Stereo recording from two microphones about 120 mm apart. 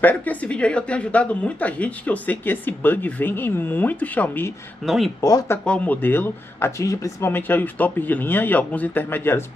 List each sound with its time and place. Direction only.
0.0 s speech: 15° left (ahead or behind)
4.8 s speech: centre (ahead or behind)
5.2 s speech: 30° left (ahead or behind)
5.7 s speech: 15° left (ahead or behind)